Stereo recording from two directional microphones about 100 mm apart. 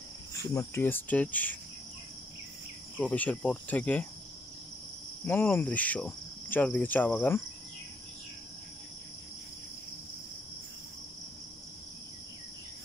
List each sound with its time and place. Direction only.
0.4 s speech: 35° left (ahead or behind)
0.8 s cricket: 20° left (ahead or behind)
3.0 s cricket: 15° left (ahead or behind)
5.2 s cricket: 20° left (ahead or behind)